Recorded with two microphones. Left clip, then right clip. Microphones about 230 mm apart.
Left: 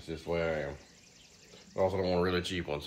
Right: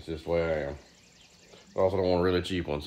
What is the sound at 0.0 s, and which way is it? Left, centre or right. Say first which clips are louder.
Speech: right 4 dB; right.